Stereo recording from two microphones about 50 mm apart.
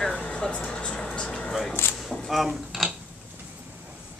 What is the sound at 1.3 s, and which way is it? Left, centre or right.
Speech, centre.